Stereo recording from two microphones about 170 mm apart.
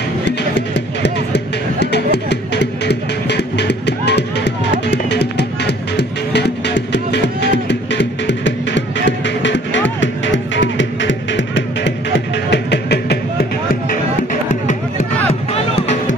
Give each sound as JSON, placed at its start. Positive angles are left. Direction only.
{"t": 0.4, "sound": "music", "side_deg": 90}
{"t": 14.5, "sound": "music", "side_deg": 45}